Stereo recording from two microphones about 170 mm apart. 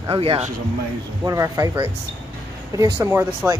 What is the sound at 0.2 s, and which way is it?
Speech, 35° right (ahead or behind).